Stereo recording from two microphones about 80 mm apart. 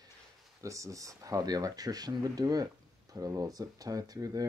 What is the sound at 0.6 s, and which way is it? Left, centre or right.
Speech, right.